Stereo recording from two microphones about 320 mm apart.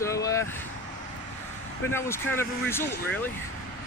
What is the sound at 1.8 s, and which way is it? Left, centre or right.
Speech, centre.